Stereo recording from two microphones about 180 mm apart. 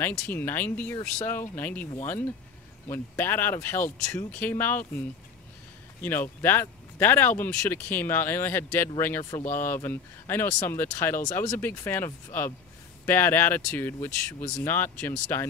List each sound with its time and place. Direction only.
0.0 s speech: 10° left (ahead or behind)